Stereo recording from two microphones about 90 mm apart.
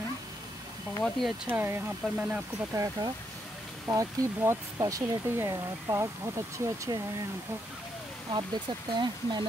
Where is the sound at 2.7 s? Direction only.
45° right (ahead or behind).